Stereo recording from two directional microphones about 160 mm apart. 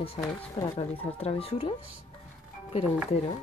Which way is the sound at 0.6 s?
35° left (ahead or behind).